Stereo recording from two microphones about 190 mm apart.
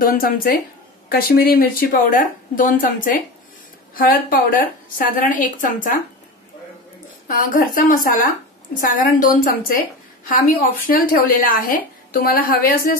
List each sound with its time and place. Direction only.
0.0 s a woman's voice: 50° left (ahead or behind)
7.2 s a woman's voice: 45° left (ahead or behind)